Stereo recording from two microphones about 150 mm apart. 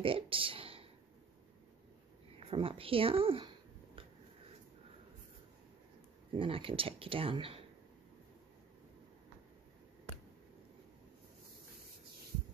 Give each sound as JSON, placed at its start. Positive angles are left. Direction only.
{"t": 0.0, "sound": "speech", "side_deg": -35}
{"t": 2.5, "sound": "a sound", "side_deg": -40}
{"t": 6.3, "sound": "speech", "side_deg": -35}